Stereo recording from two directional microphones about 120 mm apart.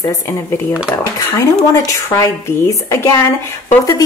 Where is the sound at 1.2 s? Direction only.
25° left (ahead or behind).